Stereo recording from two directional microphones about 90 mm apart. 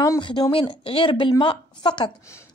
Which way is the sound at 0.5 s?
80° left.